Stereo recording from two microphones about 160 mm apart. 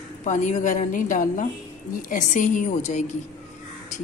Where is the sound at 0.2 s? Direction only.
50° left (ahead or behind).